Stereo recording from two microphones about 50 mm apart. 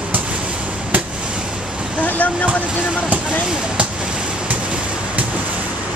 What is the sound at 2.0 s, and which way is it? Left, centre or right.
Vehicle, left.